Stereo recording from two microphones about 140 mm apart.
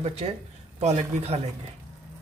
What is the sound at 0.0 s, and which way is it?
A man's voice, 50° right (ahead or behind).